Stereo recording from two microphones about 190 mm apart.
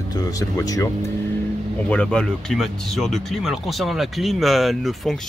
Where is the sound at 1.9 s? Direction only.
5° left (ahead or behind).